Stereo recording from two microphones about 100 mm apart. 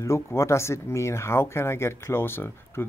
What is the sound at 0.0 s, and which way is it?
Speech, 30° left (ahead or behind).